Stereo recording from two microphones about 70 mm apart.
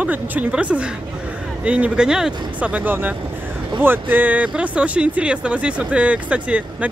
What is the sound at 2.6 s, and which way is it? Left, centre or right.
Speech, centre.